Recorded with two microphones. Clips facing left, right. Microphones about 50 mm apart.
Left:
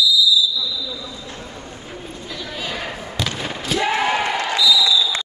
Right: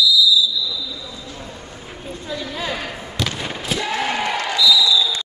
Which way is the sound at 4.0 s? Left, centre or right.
Centre.